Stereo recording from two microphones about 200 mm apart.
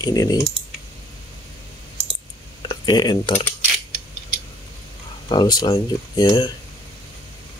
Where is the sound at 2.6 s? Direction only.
20° left (ahead or behind).